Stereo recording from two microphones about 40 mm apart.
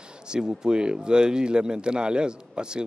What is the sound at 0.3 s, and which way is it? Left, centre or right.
Speech, centre.